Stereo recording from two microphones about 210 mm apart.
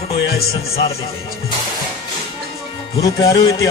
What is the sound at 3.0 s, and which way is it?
Music, 15° left (ahead or behind).